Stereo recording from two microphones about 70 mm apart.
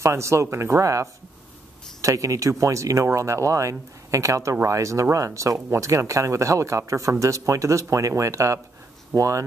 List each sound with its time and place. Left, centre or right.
0.0 s speech: right